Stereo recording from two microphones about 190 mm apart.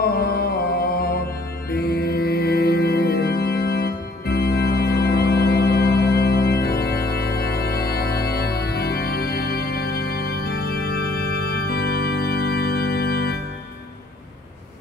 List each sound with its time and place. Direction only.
0.0 s music: 55° left (ahead or behind)